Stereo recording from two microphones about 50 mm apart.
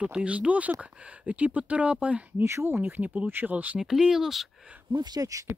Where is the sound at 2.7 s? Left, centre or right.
Right.